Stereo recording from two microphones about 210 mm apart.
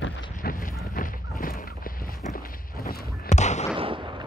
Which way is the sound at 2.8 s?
35° left (ahead or behind).